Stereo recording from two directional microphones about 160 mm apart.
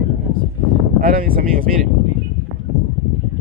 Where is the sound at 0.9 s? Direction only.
60° right (ahead or behind).